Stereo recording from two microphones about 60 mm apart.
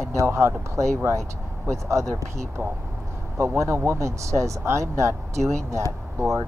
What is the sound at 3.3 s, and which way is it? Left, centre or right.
Speech, right.